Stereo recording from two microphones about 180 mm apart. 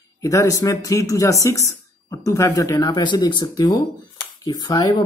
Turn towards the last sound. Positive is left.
turn(degrees=20)  # may be behind; listen again after turning